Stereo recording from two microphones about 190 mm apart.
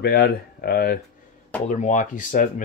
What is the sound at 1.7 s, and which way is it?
Speech, 40° left (ahead or behind).